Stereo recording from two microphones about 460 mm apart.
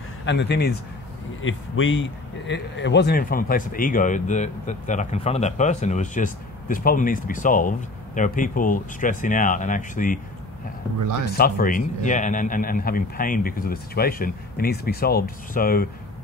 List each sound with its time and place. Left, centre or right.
0.2 s a man's voice: left
11.3 s speech: centre